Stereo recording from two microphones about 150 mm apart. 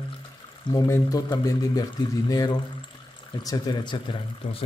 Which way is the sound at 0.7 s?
25° left (ahead or behind).